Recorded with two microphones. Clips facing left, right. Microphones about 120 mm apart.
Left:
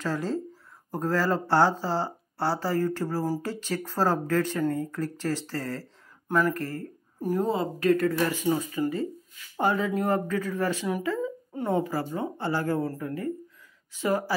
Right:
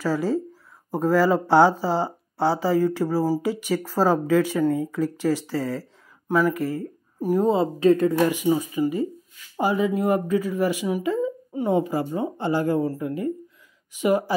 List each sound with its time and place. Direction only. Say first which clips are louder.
0.0 s speech: right 6 dB; 5° right (ahead or behind)
7.5 s speech: right 5 dB; 25° right (ahead or behind)